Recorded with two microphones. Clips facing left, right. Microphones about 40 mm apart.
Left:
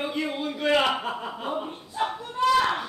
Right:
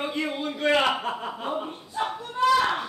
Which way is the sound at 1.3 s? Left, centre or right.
Centre.